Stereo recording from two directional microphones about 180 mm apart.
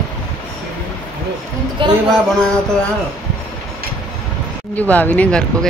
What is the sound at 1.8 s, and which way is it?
Speech, 25° right (ahead or behind).